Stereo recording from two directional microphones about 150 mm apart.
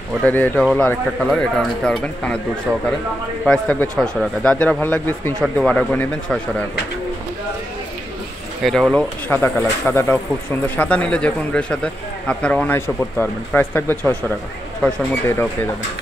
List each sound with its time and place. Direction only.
0.2 s speech: 10° left (ahead or behind)
3.4 s speech: 5° left (ahead or behind)
8.6 s speech: centre (ahead or behind)